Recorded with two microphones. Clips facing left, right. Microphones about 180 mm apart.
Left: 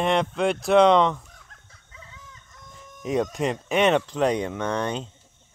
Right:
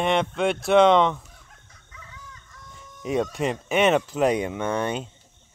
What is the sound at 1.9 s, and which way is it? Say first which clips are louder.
Chicken: right 1 dB; 25° left (ahead or behind).